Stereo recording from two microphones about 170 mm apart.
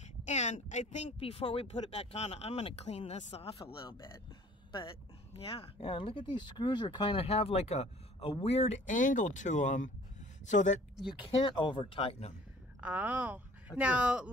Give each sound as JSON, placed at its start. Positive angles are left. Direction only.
{"t": 0.3, "sound": "speech", "side_deg": 40}
{"t": 11.4, "sound": "speech", "side_deg": 30}
{"t": 12.8, "sound": "speech", "side_deg": -10}